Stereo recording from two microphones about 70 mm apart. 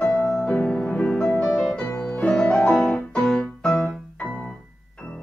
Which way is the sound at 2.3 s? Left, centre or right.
Centre.